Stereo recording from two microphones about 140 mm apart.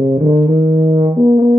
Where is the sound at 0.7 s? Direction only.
40° right (ahead or behind).